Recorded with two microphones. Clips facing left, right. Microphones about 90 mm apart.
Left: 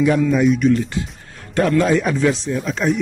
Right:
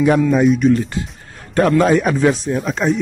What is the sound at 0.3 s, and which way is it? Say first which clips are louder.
Speech: right 2 dB; 40° right (ahead or behind).